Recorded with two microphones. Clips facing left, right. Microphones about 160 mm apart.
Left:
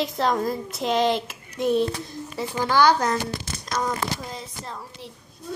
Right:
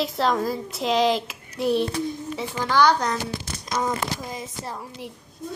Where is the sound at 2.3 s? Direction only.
10° left (ahead or behind).